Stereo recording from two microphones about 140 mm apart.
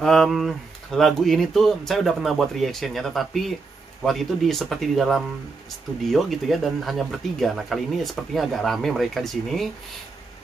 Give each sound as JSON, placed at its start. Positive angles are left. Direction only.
{"t": 0.0, "sound": "speech", "side_deg": 0}